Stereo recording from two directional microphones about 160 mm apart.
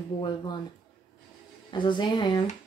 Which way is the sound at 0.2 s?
25° left (ahead or behind).